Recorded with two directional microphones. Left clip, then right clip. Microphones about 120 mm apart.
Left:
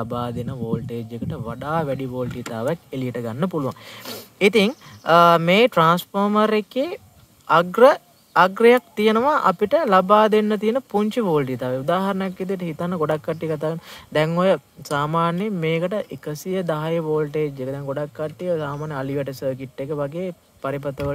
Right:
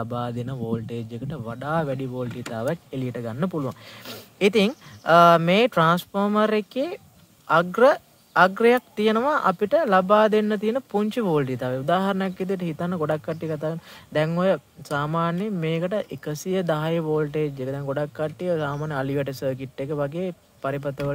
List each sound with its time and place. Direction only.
0.0 s speech: 15° left (ahead or behind)
0.4 s speech: 5° left (ahead or behind); by 4.2 s 25° left (ahead or behind)
4.4 s speech: 15° left (ahead or behind)
15.9 s speech: 5° left (ahead or behind)
17.8 s speech: 5° right (ahead or behind)